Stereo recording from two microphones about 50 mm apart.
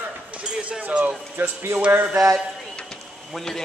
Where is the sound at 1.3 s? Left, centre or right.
Right.